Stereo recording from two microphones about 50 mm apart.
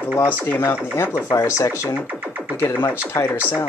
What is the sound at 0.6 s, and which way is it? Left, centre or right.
Chopping, left.